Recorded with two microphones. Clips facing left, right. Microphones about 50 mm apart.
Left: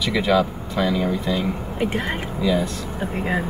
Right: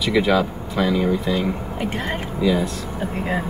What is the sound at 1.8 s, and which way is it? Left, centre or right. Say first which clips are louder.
Speech: left 2 dB; centre.